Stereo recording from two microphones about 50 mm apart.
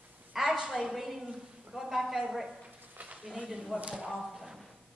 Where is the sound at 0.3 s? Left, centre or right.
Centre.